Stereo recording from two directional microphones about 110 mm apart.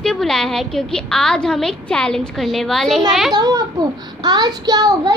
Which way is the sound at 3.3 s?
35° right (ahead or behind).